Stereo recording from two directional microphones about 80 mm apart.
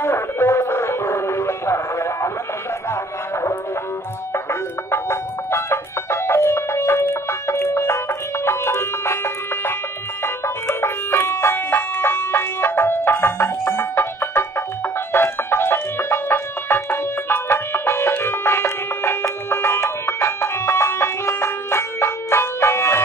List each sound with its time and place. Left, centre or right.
0.0 s music: left